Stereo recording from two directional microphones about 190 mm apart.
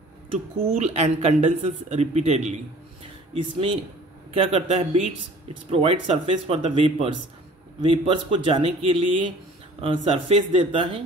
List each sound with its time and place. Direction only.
0.6 s speech: 35° right (ahead or behind)
4.3 s speech: 35° right (ahead or behind)